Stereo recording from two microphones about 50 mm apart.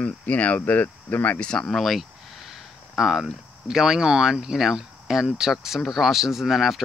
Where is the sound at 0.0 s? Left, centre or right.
Left.